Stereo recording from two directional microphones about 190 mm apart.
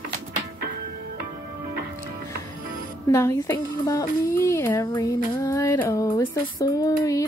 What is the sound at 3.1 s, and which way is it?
Speech, 15° left (ahead or behind).